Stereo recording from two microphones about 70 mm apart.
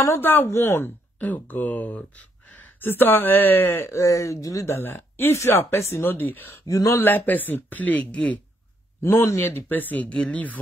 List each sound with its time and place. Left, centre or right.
0.2 s speech: left
1.2 s speech: left
3.9 s speech: left
4.7 s speech: left
6.7 s speech: left
7.0 s speech: left
9.0 s speech: left